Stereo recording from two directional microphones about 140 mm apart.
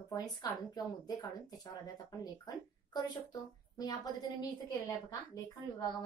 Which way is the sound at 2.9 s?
30° left (ahead or behind).